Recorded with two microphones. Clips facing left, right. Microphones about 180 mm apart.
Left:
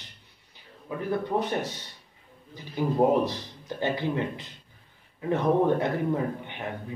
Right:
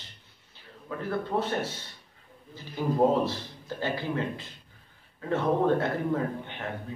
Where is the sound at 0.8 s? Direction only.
15° left (ahead or behind).